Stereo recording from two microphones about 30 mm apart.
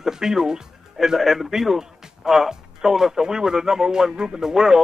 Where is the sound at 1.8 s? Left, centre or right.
Centre.